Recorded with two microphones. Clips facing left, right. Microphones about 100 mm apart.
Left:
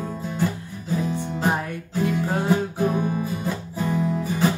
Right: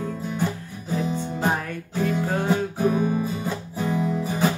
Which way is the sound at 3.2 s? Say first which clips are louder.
Even; 15° right (ahead or behind).